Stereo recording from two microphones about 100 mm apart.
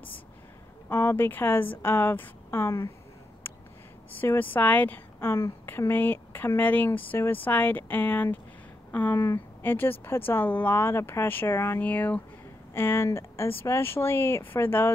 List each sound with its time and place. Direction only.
0.8 s a woman's voice: 20° left (ahead or behind)
4.2 s a woman's voice: 20° left (ahead or behind)